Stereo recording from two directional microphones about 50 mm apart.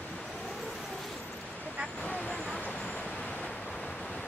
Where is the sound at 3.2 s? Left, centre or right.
Left.